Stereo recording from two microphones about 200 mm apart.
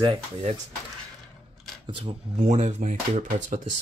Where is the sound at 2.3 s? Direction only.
35° right (ahead or behind).